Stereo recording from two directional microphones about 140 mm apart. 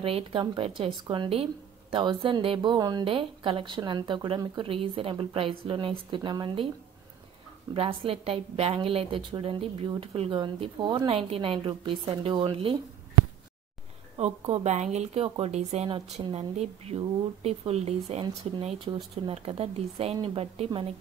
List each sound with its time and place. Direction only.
0.0 s speech: 40° right (ahead or behind)
7.7 s speech: 40° right (ahead or behind)
11.1 s speech: 45° right (ahead or behind)
14.1 s speech: 50° right (ahead or behind)